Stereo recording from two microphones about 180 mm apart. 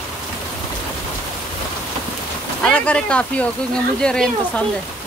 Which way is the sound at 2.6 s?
5° left (ahead or behind).